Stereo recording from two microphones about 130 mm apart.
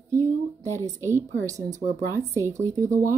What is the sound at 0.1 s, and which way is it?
A woman's voice, 20° right (ahead or behind).